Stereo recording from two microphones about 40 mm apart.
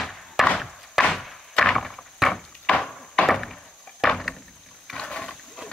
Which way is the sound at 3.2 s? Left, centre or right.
Centre.